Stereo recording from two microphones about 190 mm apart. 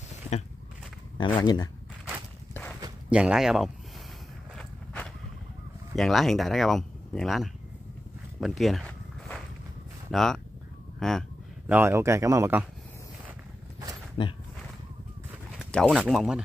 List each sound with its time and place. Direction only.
1.1 s speech: 25° left (ahead or behind)
3.1 s speech: 5° right (ahead or behind)
4.6 s walk: 5° left (ahead or behind)
5.9 s speech: centre (ahead or behind)
8.4 s zipper: centre (ahead or behind)
10.1 s speech: centre (ahead or behind)
11.7 s speech: 15° right (ahead or behind)
14.2 s speech: 30° left (ahead or behind)
15.6 s speech: centre (ahead or behind)